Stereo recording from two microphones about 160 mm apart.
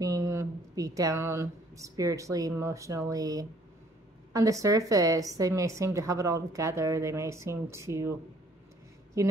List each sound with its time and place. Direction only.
0.0 s a woman's voice: 20° right (ahead or behind)